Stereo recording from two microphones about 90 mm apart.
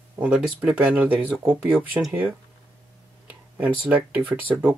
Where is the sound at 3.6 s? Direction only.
15° right (ahead or behind).